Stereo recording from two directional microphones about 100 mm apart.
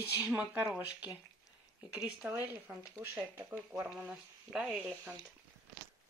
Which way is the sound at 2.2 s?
25° right (ahead or behind).